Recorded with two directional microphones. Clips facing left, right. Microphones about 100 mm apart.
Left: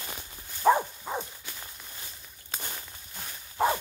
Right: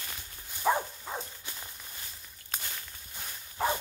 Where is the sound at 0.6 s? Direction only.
10° left (ahead or behind).